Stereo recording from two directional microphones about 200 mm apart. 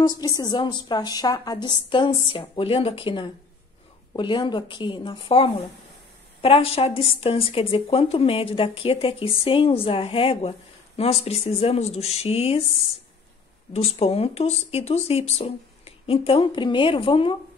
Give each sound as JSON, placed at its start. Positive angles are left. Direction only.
{"t": 0.0, "sound": "a woman's voice", "side_deg": 20}